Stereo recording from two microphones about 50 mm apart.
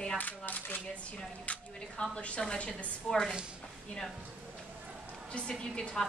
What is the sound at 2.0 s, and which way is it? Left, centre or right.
A woman's voice, centre.